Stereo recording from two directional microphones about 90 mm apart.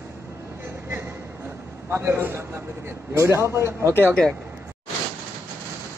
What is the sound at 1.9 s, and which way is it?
A man's voice, 25° right (ahead or behind).